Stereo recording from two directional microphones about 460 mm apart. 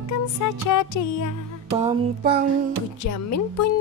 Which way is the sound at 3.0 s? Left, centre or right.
Left.